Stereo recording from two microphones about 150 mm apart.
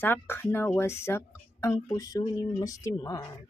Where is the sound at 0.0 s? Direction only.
15° left (ahead or behind).